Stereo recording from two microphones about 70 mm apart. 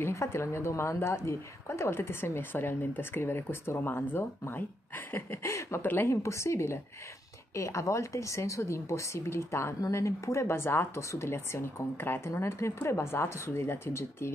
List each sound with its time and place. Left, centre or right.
0.0 s a woman's voice: left
5.8 s a woman's voice: left
6.2 s a woman's voice: left